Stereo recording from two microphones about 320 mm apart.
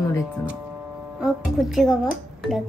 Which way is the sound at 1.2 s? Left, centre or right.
Centre.